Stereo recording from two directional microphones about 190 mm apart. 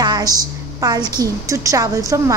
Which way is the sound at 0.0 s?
20° right (ahead or behind).